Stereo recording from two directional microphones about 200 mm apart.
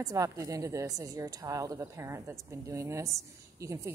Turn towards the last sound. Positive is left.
turn(degrees=-15)  # may be behind; listen again after turning